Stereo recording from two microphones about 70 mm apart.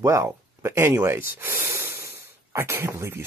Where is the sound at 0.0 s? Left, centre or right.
Right.